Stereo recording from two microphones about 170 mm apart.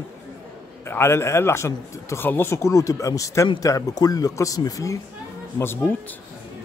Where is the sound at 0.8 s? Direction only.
15° left (ahead or behind).